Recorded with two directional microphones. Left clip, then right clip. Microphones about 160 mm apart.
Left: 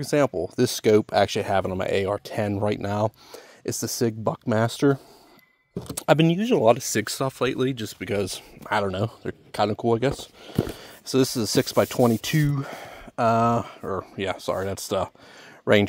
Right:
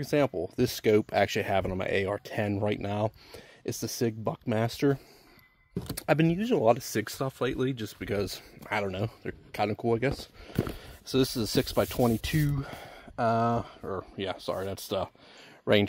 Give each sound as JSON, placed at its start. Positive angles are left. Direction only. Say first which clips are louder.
{"t": 0.0, "sound": "speech", "louder": "left 5 dB", "side_deg": 40}
{"t": 1.2, "sound": "speech", "louder": "left 5 dB", "side_deg": 30}